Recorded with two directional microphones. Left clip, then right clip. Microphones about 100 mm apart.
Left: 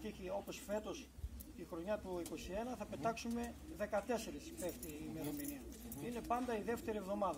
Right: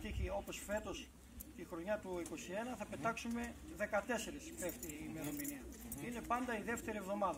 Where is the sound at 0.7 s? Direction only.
20° left (ahead or behind).